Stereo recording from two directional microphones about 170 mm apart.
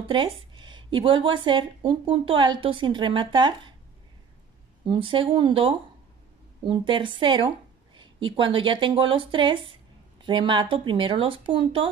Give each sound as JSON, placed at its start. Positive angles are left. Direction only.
{"t": 0.0, "sound": "speech", "side_deg": -30}
{"t": 4.8, "sound": "speech", "side_deg": -30}